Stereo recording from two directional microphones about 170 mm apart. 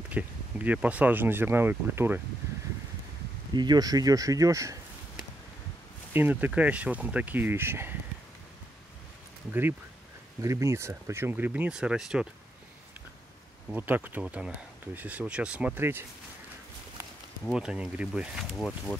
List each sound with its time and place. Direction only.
0.1 s speech: 10° right (ahead or behind)
3.5 s speech: 25° right (ahead or behind)
6.1 s speech: 10° right (ahead or behind)
9.5 s speech: 10° right (ahead or behind)
13.7 s speech: 10° right (ahead or behind)
17.5 s speech: 5° right (ahead or behind)